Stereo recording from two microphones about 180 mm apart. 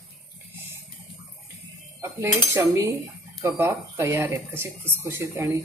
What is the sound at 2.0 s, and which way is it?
Cutlery, 15° right (ahead or behind).